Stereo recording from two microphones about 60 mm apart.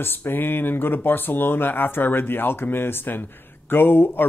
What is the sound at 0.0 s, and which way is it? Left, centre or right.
Speech, left.